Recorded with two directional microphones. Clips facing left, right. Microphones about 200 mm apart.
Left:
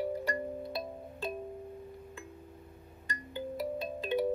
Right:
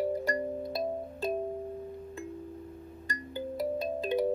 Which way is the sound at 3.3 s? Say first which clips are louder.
Right 3 dB; 40° right (ahead or behind).